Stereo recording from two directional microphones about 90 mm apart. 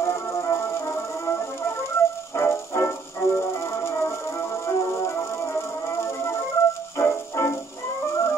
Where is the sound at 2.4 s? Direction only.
30° left (ahead or behind).